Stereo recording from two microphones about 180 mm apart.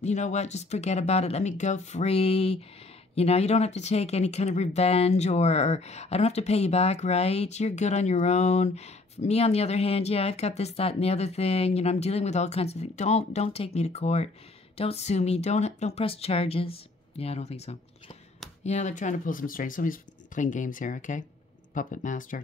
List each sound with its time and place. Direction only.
0.0 s speech: 40° left (ahead or behind)